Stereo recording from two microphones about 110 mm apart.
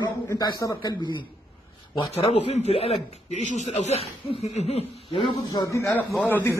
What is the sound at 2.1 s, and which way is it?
Speech, 75° left (ahead or behind).